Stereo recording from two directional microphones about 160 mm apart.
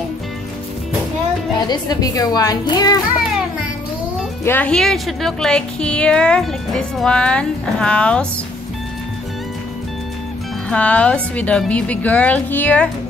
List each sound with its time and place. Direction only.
1.7 s a woman's voice: 25° left (ahead or behind)
4.5 s a woman's voice: 10° left (ahead or behind)
10.7 s a woman's voice: 10° left (ahead or behind)